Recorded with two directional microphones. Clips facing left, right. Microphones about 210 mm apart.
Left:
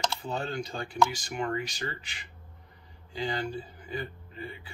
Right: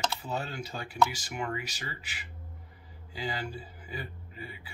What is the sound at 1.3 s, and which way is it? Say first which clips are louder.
Speech: left 3 dB; 40° left (ahead or behind).